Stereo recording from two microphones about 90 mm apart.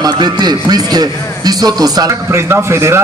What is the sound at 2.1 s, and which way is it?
Speech, 30° right (ahead or behind).